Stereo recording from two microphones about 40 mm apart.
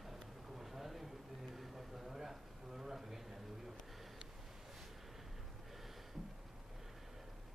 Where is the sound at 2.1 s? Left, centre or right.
Centre.